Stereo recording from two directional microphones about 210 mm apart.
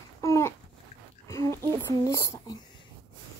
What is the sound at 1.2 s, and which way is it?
Whispering, 15° left (ahead or behind).